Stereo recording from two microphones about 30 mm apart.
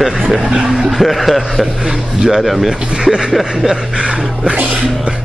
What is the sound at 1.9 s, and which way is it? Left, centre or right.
Speech, centre.